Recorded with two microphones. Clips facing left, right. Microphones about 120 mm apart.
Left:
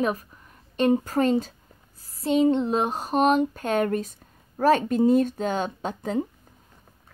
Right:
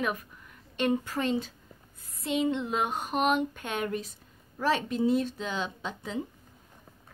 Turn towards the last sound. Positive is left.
turn(degrees=45)  # may be behind; listen again after turning